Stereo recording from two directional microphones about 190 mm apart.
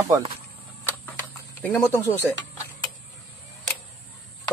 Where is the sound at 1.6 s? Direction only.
Centre (ahead or behind).